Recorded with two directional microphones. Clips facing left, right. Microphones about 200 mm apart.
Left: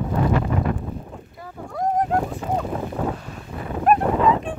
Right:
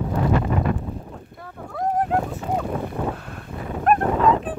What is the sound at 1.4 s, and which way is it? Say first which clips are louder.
Boat: left 1 dB; centre (ahead or behind).